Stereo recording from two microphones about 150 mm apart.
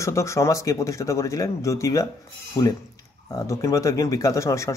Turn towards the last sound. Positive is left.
turn(degrees=20)  # may be behind; listen again after turning